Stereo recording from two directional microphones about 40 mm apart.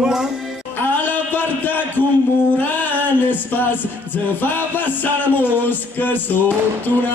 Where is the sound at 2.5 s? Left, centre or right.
Left.